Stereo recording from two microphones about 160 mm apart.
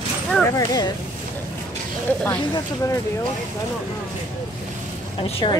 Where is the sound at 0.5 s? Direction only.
25° left (ahead or behind).